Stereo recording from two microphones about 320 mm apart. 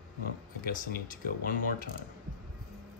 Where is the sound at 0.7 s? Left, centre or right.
Left.